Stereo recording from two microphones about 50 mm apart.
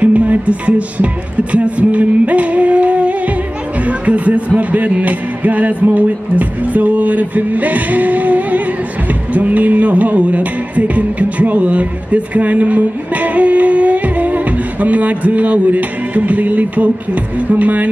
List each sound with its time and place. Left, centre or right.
0.0 s speech: right
3.8 s music: right